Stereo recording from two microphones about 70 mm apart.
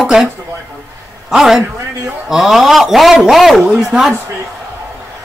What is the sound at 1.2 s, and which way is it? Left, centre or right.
A man's voice, centre.